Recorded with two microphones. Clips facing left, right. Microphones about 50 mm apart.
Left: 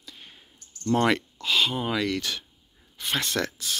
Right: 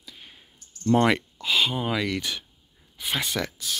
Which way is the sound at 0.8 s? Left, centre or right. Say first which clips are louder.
Right 2 dB; centre.